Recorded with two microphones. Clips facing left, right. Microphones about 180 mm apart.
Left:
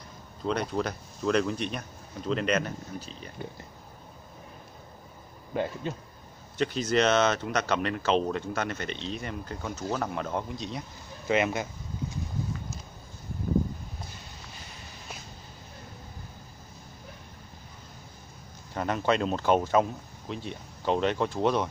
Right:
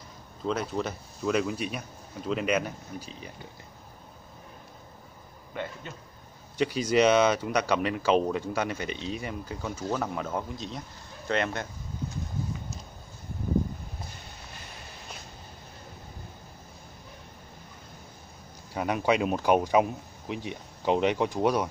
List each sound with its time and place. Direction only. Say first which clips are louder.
0.5 s speech: left 1 dB; centre (ahead or behind)
5.5 s a man's voice: left 6 dB; 35° left (ahead or behind)
6.6 s a man's voice: right 2 dB; 10° right (ahead or behind); by 11.7 s 5° left (ahead or behind)
18.7 s speech: right 1 dB; 10° right (ahead or behind)